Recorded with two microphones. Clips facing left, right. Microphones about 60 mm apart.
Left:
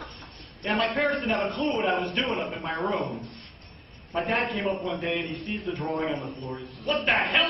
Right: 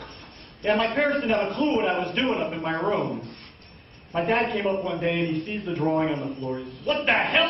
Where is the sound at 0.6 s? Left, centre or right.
Centre.